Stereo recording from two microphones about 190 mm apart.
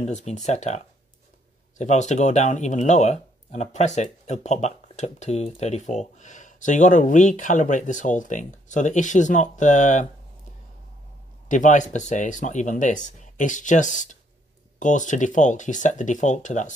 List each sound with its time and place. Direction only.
0.0 s speech: 35° left (ahead or behind)
11.4 s speech: 40° left (ahead or behind)